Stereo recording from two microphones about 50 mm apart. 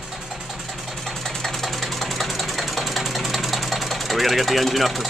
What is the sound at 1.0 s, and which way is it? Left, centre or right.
Engine, centre.